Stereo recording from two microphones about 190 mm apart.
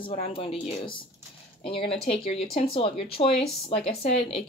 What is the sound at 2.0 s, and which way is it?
Speech, 30° left (ahead or behind).